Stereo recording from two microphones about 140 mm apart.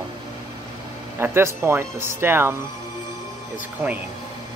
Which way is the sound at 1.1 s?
15° right (ahead or behind).